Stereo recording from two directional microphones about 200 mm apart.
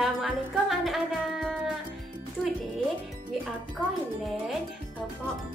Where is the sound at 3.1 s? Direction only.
Centre (ahead or behind).